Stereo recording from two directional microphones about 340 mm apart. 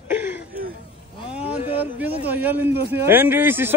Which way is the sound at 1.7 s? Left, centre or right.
Centre.